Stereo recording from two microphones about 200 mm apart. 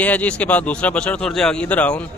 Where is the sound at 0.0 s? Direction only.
10° left (ahead or behind).